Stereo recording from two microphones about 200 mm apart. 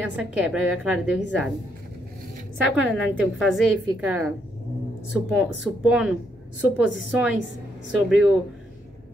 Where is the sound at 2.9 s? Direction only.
Centre (ahead or behind).